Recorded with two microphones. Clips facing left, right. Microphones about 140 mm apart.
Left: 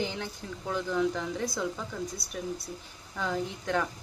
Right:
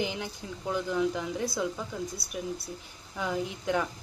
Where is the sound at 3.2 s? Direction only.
15° right (ahead or behind).